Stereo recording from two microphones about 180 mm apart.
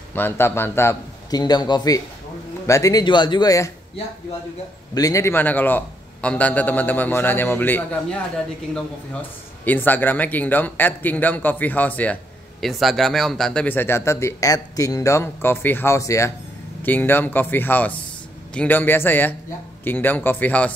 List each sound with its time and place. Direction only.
0.1 s a man's voice: 10° left (ahead or behind)
4.9 s a man's voice: 20° left (ahead or behind)
9.7 s a man's voice: 10° left (ahead or behind)